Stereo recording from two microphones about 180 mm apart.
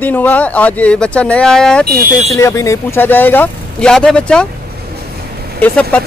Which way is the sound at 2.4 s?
15° left (ahead or behind).